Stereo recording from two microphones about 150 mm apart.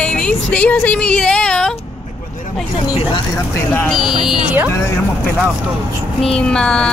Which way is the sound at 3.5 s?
15° left (ahead or behind).